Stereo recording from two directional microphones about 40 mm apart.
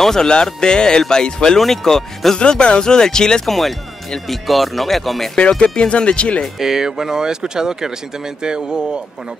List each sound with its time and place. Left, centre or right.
0.0 s speech: centre
1.6 s speech: centre
2.3 s speech: left
3.4 s speech: centre
5.6 s speech: left
6.6 s speech: centre